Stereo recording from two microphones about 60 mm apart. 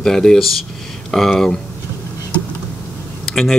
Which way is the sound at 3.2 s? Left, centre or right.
Centre.